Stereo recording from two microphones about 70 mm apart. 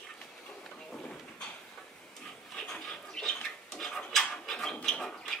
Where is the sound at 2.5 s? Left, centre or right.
Centre.